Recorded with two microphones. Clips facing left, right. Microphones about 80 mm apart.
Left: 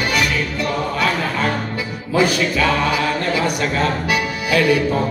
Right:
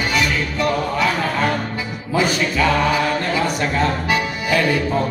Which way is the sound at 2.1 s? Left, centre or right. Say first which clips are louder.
Left 2 dB; right.